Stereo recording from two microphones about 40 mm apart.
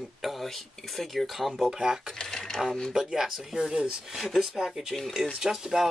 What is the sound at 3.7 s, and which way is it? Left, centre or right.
Speech, right.